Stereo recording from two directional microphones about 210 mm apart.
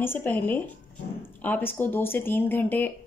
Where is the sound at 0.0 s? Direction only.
10° left (ahead or behind).